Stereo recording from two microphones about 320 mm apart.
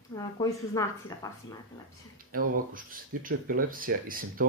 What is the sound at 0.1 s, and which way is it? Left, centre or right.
A woman's voice, centre.